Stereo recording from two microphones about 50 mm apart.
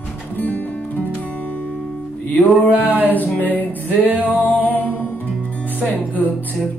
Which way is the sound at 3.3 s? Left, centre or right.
Left.